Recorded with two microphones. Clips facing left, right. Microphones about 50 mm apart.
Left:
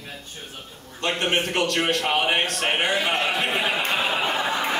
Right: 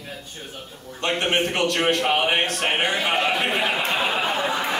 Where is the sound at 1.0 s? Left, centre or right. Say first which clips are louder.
Right 1 dB; centre.